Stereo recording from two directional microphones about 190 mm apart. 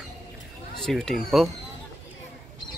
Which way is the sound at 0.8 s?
Centre (ahead or behind).